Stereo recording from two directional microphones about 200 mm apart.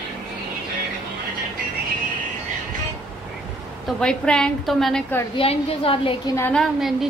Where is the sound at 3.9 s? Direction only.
5° left (ahead or behind).